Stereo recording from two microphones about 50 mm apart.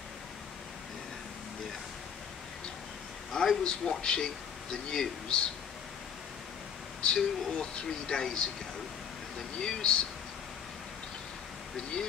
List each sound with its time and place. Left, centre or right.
3.3 s a sound: centre
3.6 s speech: centre
7.0 s speech: centre
9.6 s speech: centre
11.7 s speech: centre